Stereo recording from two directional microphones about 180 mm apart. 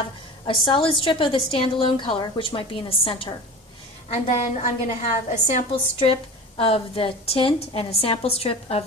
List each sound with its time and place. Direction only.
0.5 s a woman's voice: 25° left (ahead or behind)